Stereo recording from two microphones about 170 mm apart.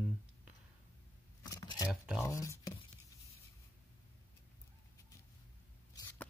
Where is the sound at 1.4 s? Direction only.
20° left (ahead or behind).